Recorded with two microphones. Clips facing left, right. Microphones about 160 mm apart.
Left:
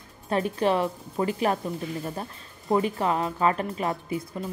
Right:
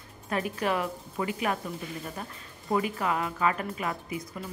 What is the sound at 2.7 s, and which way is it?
A woman's voice, 30° left (ahead or behind).